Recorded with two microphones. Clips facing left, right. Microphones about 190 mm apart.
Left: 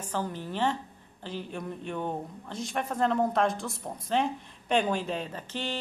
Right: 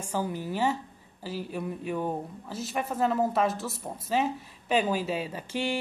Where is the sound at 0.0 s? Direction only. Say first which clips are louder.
Right 2 dB; 10° right (ahead or behind).